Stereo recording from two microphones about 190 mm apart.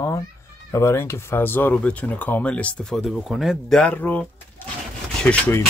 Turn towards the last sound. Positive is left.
turn(degrees=10)  # may be behind; listen again after turning